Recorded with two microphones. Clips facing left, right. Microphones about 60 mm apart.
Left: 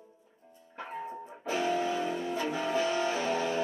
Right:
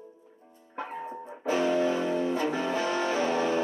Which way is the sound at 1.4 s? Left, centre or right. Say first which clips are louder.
Right 5 dB; right.